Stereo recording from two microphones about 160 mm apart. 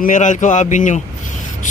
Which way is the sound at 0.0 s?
50° left (ahead or behind).